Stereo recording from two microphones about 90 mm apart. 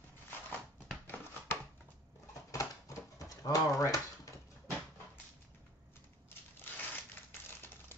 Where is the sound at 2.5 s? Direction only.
40° left (ahead or behind).